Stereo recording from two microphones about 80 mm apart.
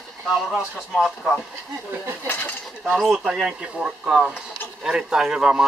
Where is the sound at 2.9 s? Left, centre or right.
Centre.